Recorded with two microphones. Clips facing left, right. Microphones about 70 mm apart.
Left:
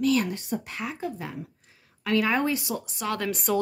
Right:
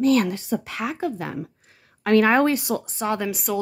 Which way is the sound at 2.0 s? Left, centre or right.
Right.